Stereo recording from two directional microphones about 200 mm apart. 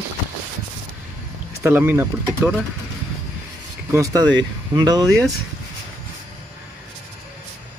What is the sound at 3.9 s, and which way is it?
Speech, 15° right (ahead or behind).